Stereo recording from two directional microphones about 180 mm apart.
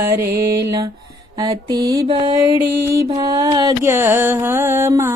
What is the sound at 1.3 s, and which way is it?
Mantra, 25° right (ahead or behind).